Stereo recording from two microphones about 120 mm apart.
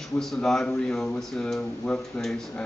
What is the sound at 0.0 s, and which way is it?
Speech, 5° left (ahead or behind).